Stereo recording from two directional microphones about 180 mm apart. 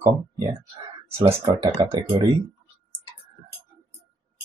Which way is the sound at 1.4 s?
25° right (ahead or behind).